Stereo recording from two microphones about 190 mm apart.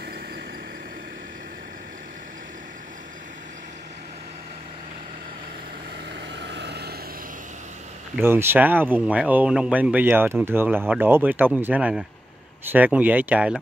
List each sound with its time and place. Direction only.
6.3 s vehicle: 60° right (ahead or behind)
8.2 s speech: 10° right (ahead or behind)